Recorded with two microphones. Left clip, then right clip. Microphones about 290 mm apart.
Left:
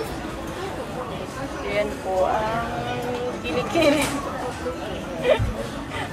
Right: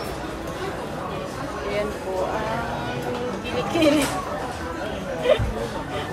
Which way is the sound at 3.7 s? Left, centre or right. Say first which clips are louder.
Even; centre.